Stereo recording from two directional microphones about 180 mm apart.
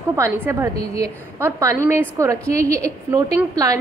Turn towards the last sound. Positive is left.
turn(degrees=-20)  # may be behind; listen again after turning